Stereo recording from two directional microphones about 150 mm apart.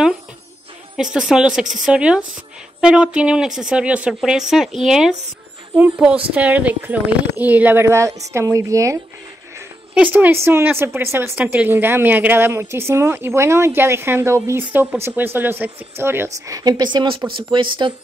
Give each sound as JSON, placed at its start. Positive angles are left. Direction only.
{"t": 1.1, "sound": "a woman's voice", "side_deg": -5}
{"t": 10.1, "sound": "a woman's voice", "side_deg": -15}
{"t": 16.4, "sound": "a woman's voice", "side_deg": -25}